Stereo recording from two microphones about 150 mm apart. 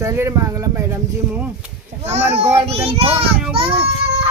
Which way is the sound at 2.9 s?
40° right (ahead or behind).